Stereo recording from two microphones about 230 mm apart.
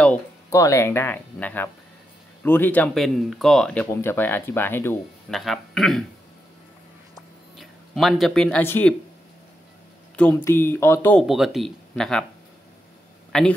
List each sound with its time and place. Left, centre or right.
0.0 s speech: centre
7.5 s speech: centre
10.1 s speech: centre
13.3 s speech: centre